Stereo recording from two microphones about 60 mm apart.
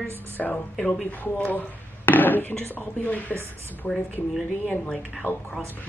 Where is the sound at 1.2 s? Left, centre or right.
Left.